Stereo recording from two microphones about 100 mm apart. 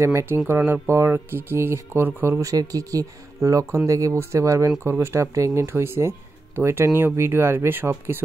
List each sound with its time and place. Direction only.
0.0 s speech: 25° right (ahead or behind)